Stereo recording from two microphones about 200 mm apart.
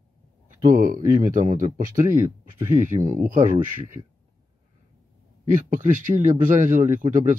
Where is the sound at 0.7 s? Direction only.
40° right (ahead or behind).